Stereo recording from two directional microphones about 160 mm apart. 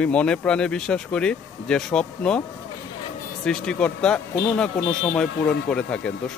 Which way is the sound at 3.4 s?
5° left (ahead or behind).